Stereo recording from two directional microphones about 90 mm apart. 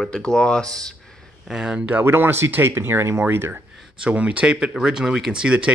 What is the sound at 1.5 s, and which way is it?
Speech, 10° right (ahead or behind).